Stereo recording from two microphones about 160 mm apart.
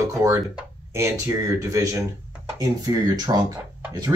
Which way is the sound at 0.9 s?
20° right (ahead or behind).